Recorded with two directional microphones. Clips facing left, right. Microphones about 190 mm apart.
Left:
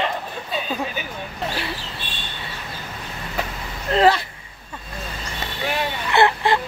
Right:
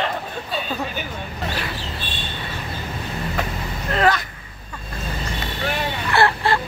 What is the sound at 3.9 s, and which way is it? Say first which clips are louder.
Speech: left 3 dB; 30° left (ahead or behind).